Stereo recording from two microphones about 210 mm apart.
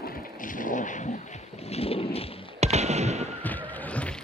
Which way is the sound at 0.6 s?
40° left (ahead or behind).